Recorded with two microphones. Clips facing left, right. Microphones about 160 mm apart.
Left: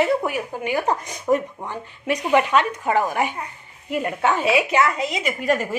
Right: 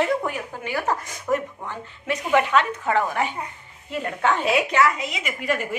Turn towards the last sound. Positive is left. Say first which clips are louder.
# left 5 dB
turn(degrees=40)  # may be behind; listen again after turning